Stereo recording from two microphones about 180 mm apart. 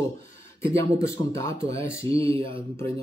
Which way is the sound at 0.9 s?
15° left (ahead or behind).